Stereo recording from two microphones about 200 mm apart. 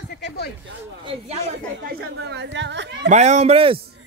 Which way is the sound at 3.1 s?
35° right (ahead or behind).